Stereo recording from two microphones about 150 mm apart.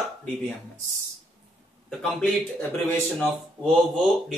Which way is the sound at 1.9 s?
5° left (ahead or behind).